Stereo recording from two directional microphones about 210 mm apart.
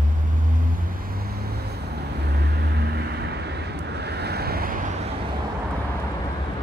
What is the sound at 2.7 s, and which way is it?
Vehicle, 50° right (ahead or behind).